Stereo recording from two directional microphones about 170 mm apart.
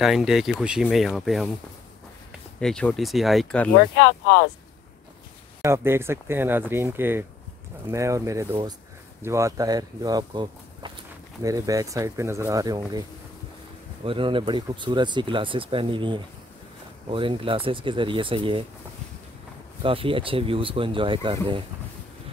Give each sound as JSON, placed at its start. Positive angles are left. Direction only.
{"t": 0.0, "sound": "speech", "side_deg": 0}
{"t": 2.6, "sound": "speech", "side_deg": 5}
{"t": 4.0, "sound": "speech", "side_deg": 75}
{"t": 5.6, "sound": "speech", "side_deg": -15}
{"t": 14.0, "sound": "speech", "side_deg": -30}
{"t": 19.8, "sound": "speech", "side_deg": -30}